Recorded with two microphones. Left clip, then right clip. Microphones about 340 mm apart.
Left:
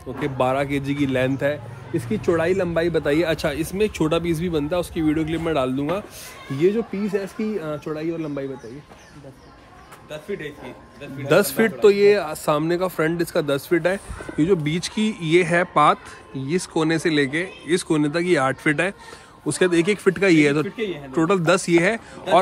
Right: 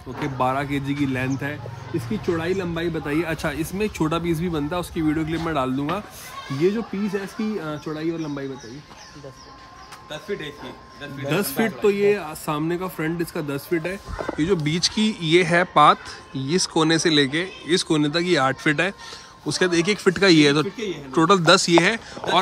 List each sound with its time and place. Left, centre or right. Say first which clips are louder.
0.2 s speech: left 2 dB; centre
11.2 s speech: left 6 dB; centre